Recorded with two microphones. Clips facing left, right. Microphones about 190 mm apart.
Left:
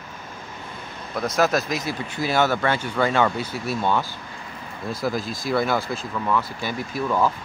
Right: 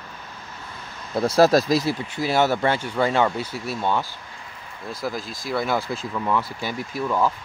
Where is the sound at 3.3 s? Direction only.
15° left (ahead or behind).